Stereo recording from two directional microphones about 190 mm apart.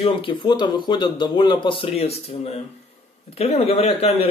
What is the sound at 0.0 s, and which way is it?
Speech, 25° left (ahead or behind).